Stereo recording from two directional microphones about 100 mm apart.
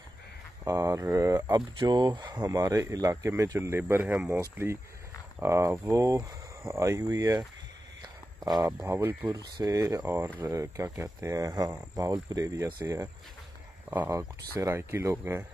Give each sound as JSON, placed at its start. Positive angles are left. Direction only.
{"t": 0.7, "sound": "speech", "side_deg": -35}
{"t": 1.8, "sound": "speech", "side_deg": -45}
{"t": 3.8, "sound": "speech", "side_deg": -15}
{"t": 8.8, "sound": "speech", "side_deg": -25}
{"t": 10.0, "sound": "speech", "side_deg": -20}
{"t": 10.4, "sound": "speech", "side_deg": -30}
{"t": 13.8, "sound": "speech", "side_deg": -20}
{"t": 14.1, "sound": "speech", "side_deg": -30}